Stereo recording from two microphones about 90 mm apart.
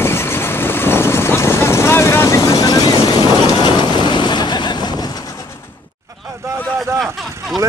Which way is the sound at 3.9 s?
55° left (ahead or behind).